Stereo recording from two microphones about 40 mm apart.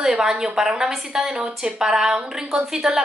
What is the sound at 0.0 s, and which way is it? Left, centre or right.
A woman's voice, centre.